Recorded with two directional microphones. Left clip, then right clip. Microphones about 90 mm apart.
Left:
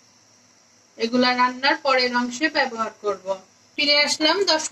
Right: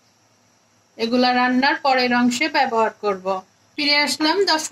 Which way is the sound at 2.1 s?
35° right (ahead or behind).